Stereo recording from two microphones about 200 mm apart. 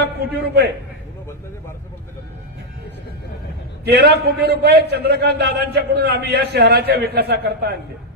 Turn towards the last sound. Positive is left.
turn(degrees=-55)  # may be behind; listen again after turning